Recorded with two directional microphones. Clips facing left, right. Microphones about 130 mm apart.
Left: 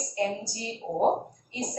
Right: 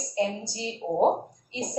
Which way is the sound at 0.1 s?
20° right (ahead or behind).